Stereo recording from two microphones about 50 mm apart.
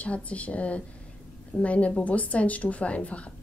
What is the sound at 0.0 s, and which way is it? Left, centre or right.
A woman's voice, left.